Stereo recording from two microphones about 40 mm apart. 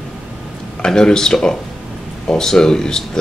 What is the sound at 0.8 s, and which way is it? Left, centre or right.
Speech, centre.